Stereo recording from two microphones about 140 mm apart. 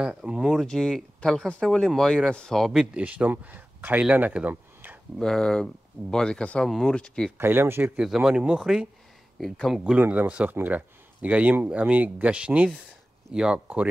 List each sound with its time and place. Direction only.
0.0 s speech: 5° right (ahead or behind)
5.2 s speech: 5° left (ahead or behind)
7.3 s speech: 15° right (ahead or behind)